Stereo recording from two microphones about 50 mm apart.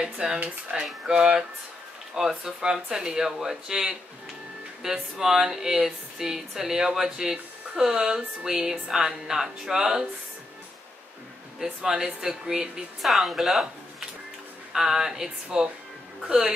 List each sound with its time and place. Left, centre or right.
0.0 s speech: centre
11.6 s speech: centre